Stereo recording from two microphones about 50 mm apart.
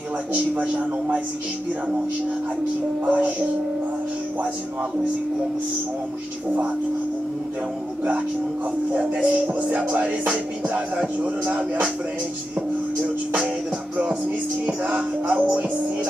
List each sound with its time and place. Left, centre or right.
0.3 s music: right
3.1 s speech: right
8.9 s music: right
11.1 s speech: right
12.5 s music: right
14.8 s music: right